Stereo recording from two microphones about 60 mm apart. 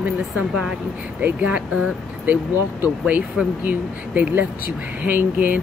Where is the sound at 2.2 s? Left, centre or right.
Right.